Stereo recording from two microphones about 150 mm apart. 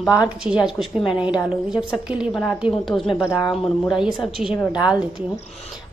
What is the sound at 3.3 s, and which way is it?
Speech, 25° left (ahead or behind).